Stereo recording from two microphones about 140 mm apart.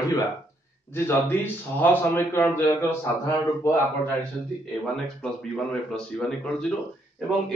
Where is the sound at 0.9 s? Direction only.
15° left (ahead or behind).